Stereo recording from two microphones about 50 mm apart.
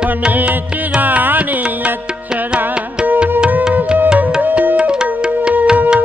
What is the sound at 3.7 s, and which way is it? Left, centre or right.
Music, right.